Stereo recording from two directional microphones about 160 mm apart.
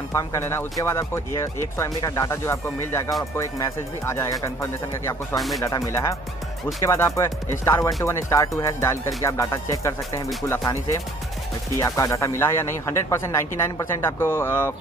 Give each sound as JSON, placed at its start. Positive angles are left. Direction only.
{"t": 0.1, "sound": "speech", "side_deg": 20}
{"t": 5.3, "sound": "speech", "side_deg": 0}
{"t": 5.6, "sound": "speech", "side_deg": 20}